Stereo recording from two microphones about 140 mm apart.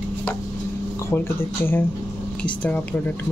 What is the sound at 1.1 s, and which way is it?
Speech, 15° left (ahead or behind).